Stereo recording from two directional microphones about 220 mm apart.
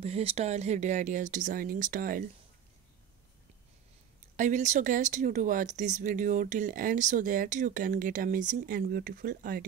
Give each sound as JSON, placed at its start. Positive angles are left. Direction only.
{"t": 0.0, "sound": "speech", "side_deg": -25}
{"t": 4.4, "sound": "speech", "side_deg": -35}